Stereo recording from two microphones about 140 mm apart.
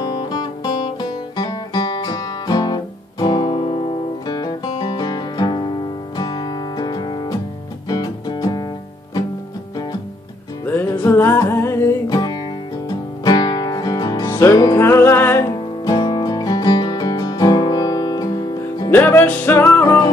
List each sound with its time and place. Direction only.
0.0 s music: 30° left (ahead or behind)
1.0 s guitar: 30° left (ahead or behind)
4.3 s music: 30° left (ahead or behind)
10.6 s music: 15° left (ahead or behind)
12.1 s music: 30° left (ahead or behind)
15.8 s music: 30° left (ahead or behind)
18.9 s music: 15° left (ahead or behind)